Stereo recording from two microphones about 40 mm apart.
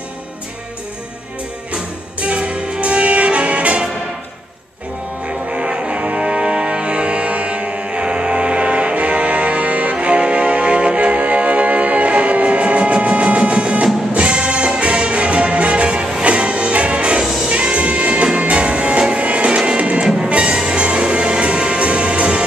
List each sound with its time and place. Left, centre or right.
1.7 s music: right
5.5 s music: right